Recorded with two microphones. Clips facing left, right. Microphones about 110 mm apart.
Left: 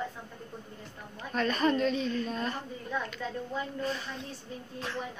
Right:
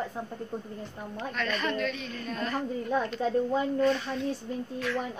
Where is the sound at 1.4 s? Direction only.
30° left (ahead or behind).